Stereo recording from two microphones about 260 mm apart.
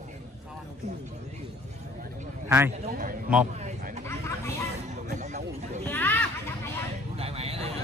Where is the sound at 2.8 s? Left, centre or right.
Right.